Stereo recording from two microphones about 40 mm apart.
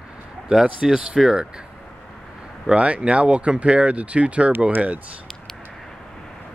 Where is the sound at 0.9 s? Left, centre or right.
Centre.